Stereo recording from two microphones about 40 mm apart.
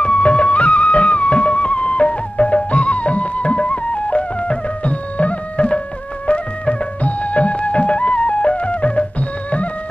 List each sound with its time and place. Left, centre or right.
0.0 s music: left